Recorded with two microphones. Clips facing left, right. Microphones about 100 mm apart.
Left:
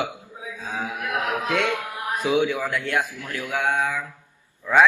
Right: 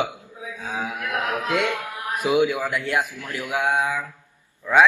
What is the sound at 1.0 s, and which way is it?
Speech, 15° left (ahead or behind).